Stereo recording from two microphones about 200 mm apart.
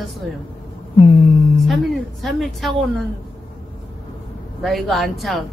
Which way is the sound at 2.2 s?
Centre (ahead or behind).